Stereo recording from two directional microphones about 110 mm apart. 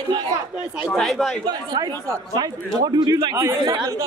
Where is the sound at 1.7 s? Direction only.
40° right (ahead or behind).